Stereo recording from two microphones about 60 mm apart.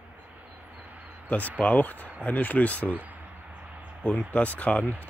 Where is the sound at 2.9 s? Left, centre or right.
Right.